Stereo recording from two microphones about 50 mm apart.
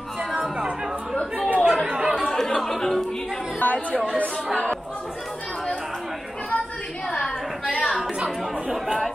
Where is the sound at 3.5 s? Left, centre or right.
Left.